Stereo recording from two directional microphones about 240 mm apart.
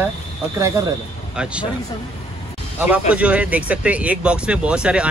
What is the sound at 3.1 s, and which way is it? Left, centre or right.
Speech, centre.